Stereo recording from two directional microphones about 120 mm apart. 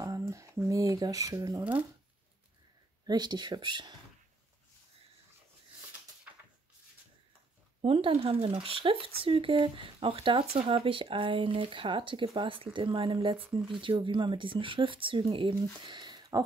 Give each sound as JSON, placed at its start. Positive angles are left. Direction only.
{"t": 0.0, "sound": "speech", "side_deg": -25}
{"t": 1.6, "sound": "speech", "side_deg": -15}
{"t": 3.1, "sound": "speech", "side_deg": -35}
{"t": 7.8, "sound": "speech", "side_deg": -50}